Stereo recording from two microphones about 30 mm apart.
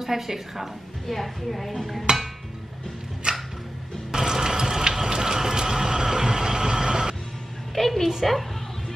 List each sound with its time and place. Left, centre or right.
0.0 s a woman's voice: centre
1.0 s speech: centre
3.3 s music: right
4.1 s a sound: centre
7.7 s music: centre
8.2 s speech: centre